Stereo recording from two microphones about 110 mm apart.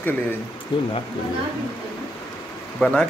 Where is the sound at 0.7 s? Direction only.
50° left (ahead or behind).